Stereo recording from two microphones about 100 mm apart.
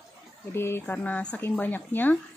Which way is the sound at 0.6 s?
25° left (ahead or behind).